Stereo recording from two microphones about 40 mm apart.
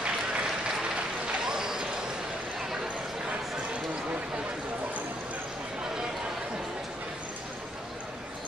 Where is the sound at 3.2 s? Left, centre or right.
Right.